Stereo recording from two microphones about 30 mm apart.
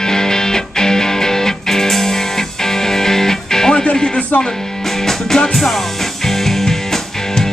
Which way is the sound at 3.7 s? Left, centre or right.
Left.